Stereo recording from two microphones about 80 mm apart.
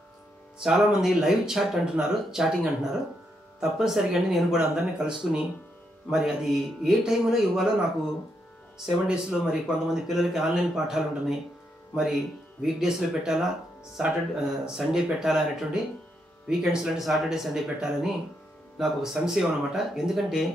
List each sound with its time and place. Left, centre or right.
0.6 s speech: centre
8.7 s speech: centre